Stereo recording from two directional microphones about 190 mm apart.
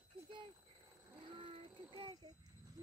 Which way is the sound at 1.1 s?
25° right (ahead or behind).